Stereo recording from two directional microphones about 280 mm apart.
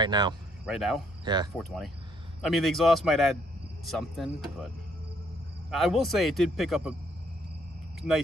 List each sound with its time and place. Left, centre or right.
0.0 s speech: centre
0.7 s speech: centre
1.2 s speech: centre
1.6 s speech: centre
5.7 s speech: centre